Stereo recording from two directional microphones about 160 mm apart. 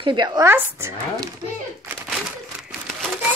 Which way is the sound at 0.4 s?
15° right (ahead or behind).